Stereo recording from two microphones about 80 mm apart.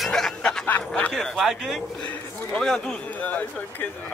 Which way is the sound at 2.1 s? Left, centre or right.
Centre.